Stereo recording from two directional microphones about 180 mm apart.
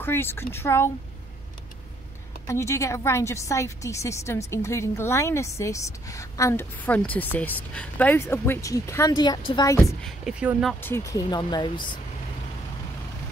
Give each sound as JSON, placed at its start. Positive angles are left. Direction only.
{"t": 0.0, "sound": "a woman's voice", "side_deg": 10}
{"t": 2.4, "sound": "a woman's voice", "side_deg": 15}
{"t": 10.0, "sound": "speech", "side_deg": 0}
{"t": 10.8, "sound": "speech", "side_deg": 15}